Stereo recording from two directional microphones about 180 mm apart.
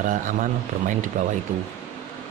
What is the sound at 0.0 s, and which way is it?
Speech, 45° right (ahead or behind).